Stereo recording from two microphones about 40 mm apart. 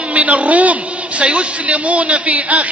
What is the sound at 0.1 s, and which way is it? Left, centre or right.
A man's voice, right.